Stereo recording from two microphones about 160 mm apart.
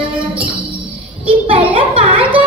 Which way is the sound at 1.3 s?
35° right (ahead or behind).